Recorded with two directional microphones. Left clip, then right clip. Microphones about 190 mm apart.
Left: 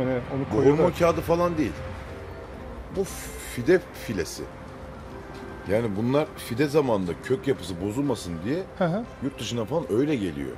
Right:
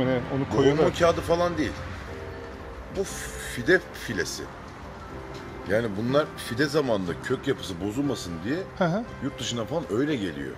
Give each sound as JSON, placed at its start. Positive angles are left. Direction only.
{"t": 0.0, "sound": "speech", "side_deg": -10}
{"t": 0.7, "sound": "speech", "side_deg": 45}
{"t": 3.5, "sound": "speech", "side_deg": 45}
{"t": 5.7, "sound": "speech", "side_deg": 45}
{"t": 8.7, "sound": "speech", "side_deg": -5}
{"t": 9.4, "sound": "speech", "side_deg": 45}